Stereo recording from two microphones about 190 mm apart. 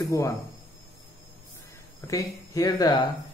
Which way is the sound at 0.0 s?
15° left (ahead or behind).